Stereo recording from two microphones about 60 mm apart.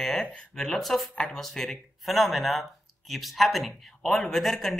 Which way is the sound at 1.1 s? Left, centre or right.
Centre.